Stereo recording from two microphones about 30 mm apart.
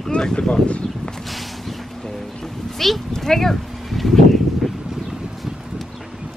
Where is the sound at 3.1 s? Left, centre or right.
Centre.